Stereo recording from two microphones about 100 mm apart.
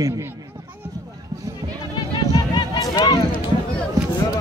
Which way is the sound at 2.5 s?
45° left (ahead or behind).